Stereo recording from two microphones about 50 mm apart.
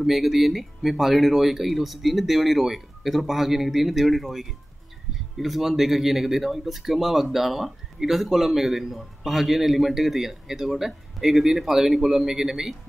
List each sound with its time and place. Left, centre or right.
0.0 s speech: centre